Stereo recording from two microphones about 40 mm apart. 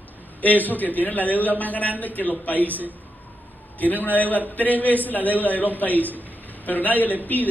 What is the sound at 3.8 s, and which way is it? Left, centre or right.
A man's voice, left.